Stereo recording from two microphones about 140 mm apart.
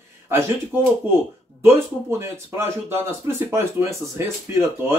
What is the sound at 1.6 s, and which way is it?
Speech, 20° right (ahead or behind).